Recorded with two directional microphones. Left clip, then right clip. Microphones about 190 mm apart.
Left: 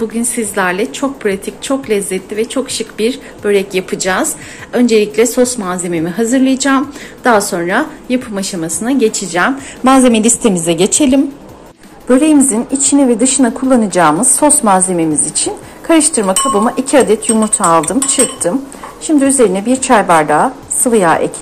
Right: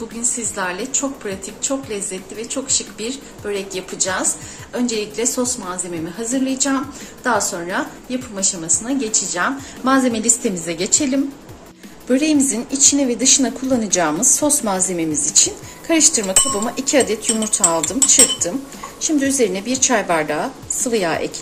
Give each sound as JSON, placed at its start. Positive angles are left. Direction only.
{"t": 0.2, "sound": "a woman's voice", "side_deg": 30}
{"t": 12.1, "sound": "a woman's voice", "side_deg": 0}